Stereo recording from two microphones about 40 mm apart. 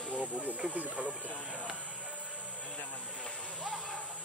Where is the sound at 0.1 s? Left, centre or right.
Right.